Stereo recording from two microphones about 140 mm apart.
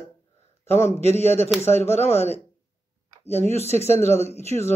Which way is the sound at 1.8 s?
50° left (ahead or behind).